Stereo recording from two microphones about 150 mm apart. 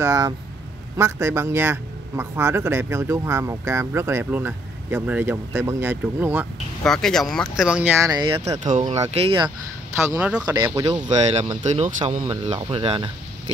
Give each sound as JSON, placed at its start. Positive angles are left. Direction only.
{"t": 0.0, "sound": "a man's voice", "side_deg": -20}
{"t": 6.8, "sound": "a man's voice", "side_deg": 5}
{"t": 8.1, "sound": "speech", "side_deg": -30}
{"t": 8.6, "sound": "speech", "side_deg": -50}
{"t": 9.1, "sound": "speech", "side_deg": -40}
{"t": 10.1, "sound": "a man's voice", "side_deg": -10}
{"t": 11.1, "sound": "speech", "side_deg": -45}